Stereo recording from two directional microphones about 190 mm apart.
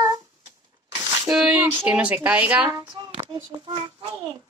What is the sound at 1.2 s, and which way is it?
Speech, 5° right (ahead or behind).